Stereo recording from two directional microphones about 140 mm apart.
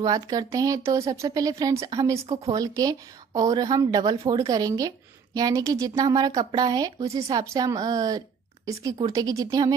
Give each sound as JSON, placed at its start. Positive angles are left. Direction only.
{"t": 0.0, "sound": "speech", "side_deg": -25}